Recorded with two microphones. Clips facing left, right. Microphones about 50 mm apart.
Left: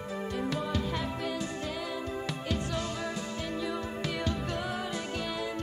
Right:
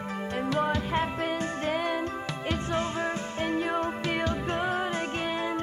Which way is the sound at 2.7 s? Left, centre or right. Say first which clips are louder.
Right 5 dB; right.